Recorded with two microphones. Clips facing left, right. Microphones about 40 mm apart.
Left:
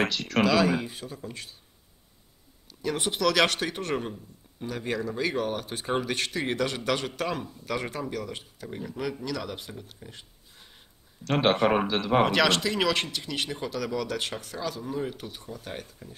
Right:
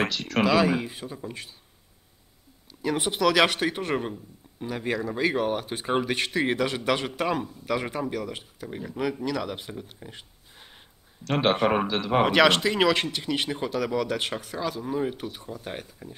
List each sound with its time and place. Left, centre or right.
0.3 s a man's voice: centre
2.7 s a man's voice: centre
11.2 s speech: centre
12.3 s a man's voice: right
15.4 s a man's voice: right